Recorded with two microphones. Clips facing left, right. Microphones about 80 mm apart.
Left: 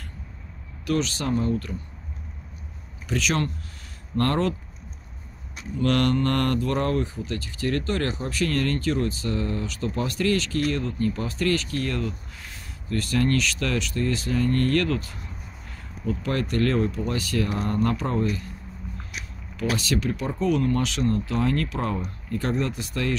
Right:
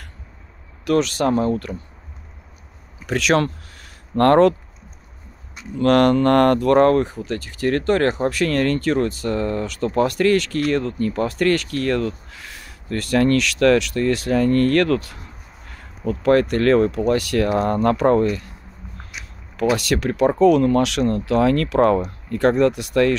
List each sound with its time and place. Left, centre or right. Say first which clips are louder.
0.8 s speech: right 7 dB; right
3.1 s speech: right 7 dB; right
4.2 s speech: right 11 dB; right
5.8 s speech: right 7 dB; right
17.6 s speech: right 9 dB; right
19.7 s speech: right 4 dB; right